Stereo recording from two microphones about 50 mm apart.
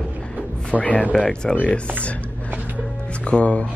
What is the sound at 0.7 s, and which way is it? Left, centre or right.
Speech, left.